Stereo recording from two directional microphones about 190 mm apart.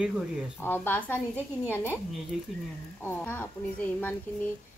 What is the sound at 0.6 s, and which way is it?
Speech, 10° left (ahead or behind).